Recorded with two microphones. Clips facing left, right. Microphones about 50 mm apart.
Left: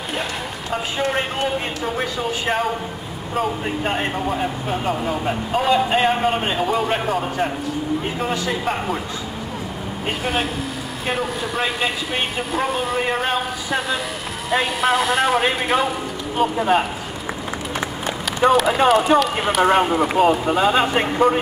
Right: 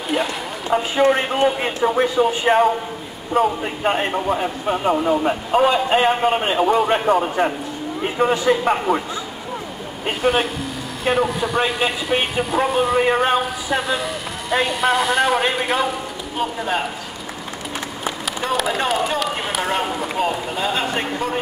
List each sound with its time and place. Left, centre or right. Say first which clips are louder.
0.7 s speech: right 7 dB; right
1.1 s a man's voice: right 4 dB; centre
10.0 s speech: right 4 dB; centre
18.4 s speech: left 6 dB; centre